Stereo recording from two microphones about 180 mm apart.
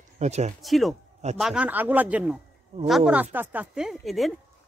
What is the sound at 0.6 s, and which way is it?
Speech, centre (ahead or behind).